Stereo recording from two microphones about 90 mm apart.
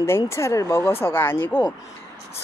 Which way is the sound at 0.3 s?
35° left (ahead or behind).